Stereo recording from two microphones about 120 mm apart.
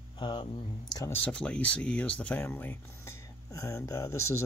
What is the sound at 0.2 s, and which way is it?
Speech, 45° left (ahead or behind).